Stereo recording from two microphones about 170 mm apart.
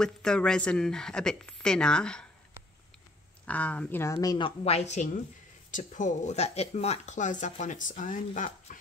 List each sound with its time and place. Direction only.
0.0 s speech: 5° left (ahead or behind)
3.4 s speech: 10° left (ahead or behind); by 8.7 s 50° left (ahead or behind)